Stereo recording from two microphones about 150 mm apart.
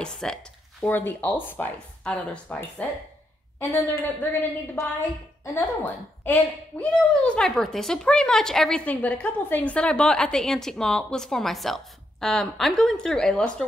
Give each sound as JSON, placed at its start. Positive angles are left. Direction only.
{"t": 0.0, "sound": "a woman's voice", "side_deg": 5}